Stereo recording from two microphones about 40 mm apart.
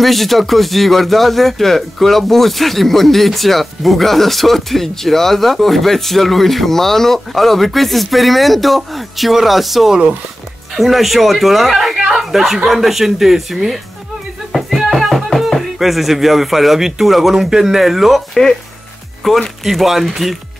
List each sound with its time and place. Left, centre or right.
0.0 s speech: centre
12.1 s a sound: centre
12.6 s speech: centre
14.5 s music: centre
15.4 s speech: centre
19.2 s speech: centre
19.6 s speech: centre